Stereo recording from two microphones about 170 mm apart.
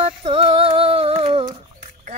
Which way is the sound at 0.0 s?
35° right (ahead or behind).